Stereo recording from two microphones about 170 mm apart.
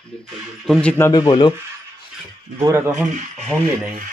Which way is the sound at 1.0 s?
25° left (ahead or behind).